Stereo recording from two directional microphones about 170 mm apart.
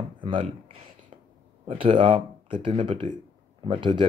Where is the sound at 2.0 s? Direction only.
30° right (ahead or behind).